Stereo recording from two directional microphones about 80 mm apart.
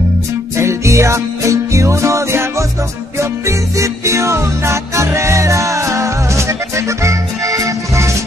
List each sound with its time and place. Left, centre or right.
0.6 s music: right